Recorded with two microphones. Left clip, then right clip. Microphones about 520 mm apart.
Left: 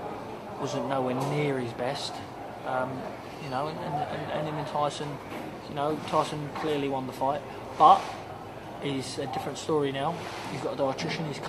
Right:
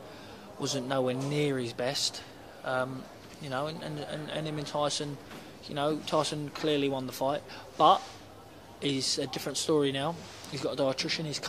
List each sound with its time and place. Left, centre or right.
0.7 s speech: right
4.7 s speech: right